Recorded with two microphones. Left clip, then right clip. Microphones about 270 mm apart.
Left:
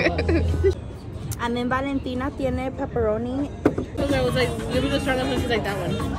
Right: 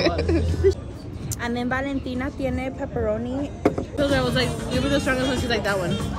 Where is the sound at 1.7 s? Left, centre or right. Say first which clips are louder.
Left 1 dB; left.